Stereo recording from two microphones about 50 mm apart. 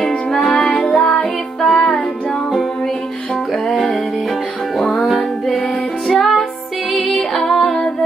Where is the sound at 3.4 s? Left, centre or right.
Centre.